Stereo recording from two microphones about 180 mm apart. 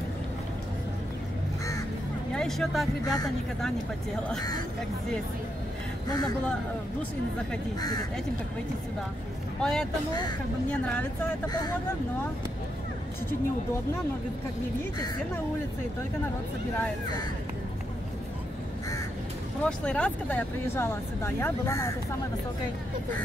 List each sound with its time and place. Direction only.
2.3 s speech: centre (ahead or behind)
6.0 s speech: 20° left (ahead or behind)
9.6 s speech: 5° left (ahead or behind)
19.6 s speech: 5° left (ahead or behind)